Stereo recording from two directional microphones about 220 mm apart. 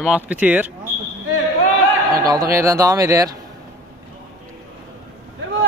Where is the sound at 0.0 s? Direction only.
5° right (ahead or behind).